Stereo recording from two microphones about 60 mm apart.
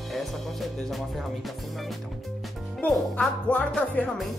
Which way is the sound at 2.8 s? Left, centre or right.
Left.